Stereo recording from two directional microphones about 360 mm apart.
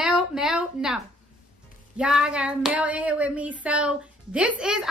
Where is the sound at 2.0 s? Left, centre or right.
Centre.